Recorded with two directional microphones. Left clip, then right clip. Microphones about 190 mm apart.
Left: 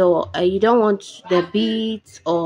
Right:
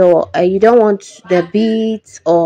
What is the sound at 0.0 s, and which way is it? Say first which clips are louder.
Speech: right 6 dB; 20° right (ahead or behind).